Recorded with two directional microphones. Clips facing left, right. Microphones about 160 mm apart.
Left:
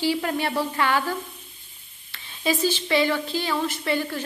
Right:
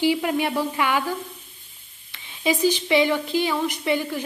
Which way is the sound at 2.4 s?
15° right (ahead or behind).